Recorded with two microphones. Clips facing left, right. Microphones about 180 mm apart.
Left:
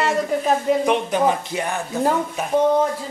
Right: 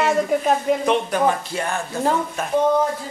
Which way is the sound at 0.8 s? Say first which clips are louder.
Even; 15° left (ahead or behind).